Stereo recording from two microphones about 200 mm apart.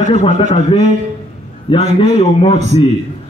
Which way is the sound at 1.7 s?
25° left (ahead or behind).